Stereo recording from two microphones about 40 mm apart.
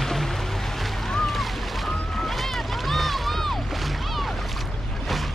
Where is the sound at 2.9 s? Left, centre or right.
Centre.